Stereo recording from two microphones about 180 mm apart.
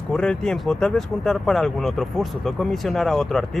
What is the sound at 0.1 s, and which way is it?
Speech, 5° left (ahead or behind).